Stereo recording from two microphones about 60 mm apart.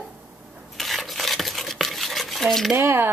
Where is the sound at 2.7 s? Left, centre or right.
Right.